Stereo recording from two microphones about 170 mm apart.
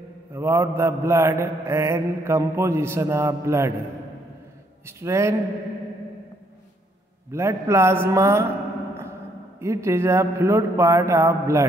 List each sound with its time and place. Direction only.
0.3 s mantra: 15° right (ahead or behind)
4.8 s mantra: 15° right (ahead or behind)
7.2 s mantra: 15° right (ahead or behind)
9.6 s mantra: 15° right (ahead or behind)